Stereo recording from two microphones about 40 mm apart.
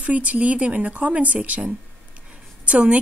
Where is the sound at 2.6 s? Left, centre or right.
Right.